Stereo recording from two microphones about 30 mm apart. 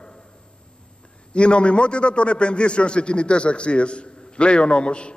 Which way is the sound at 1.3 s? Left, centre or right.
Left.